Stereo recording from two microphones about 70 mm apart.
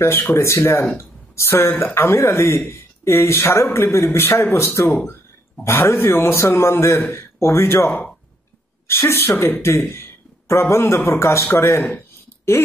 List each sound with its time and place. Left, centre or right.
0.0 s a man's voice: left